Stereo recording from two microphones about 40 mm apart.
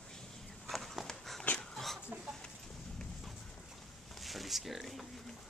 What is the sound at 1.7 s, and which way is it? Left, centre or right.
Chicken, centre.